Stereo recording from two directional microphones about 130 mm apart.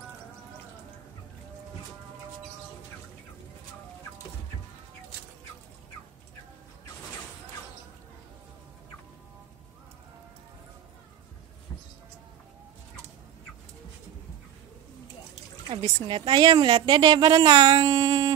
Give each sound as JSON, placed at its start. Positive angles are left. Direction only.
{"t": 15.7, "sound": "a woman's voice", "side_deg": -40}